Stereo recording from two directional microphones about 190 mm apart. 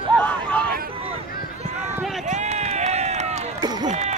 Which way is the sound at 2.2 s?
40° right (ahead or behind).